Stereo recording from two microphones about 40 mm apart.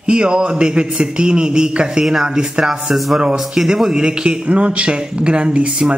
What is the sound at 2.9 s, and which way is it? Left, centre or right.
Speech, centre.